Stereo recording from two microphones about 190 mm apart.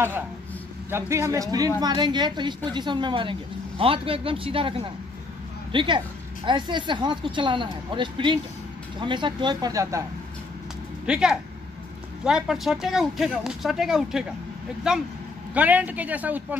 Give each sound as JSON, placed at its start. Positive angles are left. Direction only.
{"t": 0.8, "sound": "speech", "side_deg": -15}
{"t": 11.1, "sound": "speech", "side_deg": -5}